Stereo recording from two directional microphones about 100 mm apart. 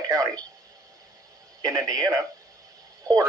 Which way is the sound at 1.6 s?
40° right (ahead or behind).